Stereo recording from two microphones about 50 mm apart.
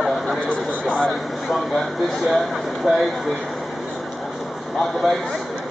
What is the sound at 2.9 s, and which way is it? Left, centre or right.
Speech, centre.